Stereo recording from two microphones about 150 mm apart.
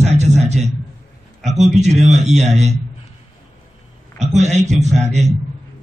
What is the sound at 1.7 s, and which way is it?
A man's voice, 50° right (ahead or behind).